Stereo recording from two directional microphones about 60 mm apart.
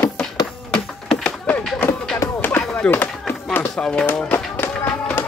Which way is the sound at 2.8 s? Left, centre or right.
Left.